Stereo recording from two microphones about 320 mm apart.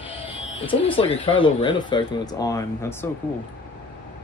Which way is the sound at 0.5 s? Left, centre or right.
Centre.